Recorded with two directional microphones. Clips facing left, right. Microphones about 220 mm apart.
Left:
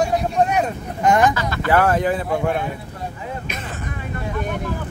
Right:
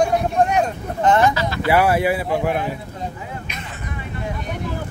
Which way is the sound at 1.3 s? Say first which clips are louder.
Right 1 dB; 50° left (ahead or behind).